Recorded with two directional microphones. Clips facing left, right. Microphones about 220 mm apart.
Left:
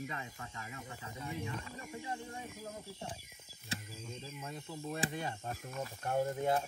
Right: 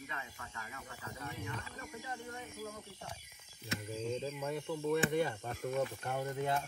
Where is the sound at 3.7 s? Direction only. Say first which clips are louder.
Right 3 dB; 30° left (ahead or behind).